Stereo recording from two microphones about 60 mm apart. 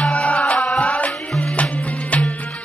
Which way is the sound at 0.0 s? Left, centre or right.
Centre.